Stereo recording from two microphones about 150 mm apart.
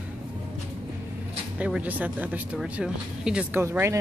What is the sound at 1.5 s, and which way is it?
Speech, 5° right (ahead or behind).